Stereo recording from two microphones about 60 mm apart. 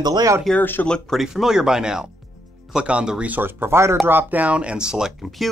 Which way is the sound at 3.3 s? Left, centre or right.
Right.